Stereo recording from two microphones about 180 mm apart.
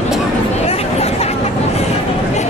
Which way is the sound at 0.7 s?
35° left (ahead or behind).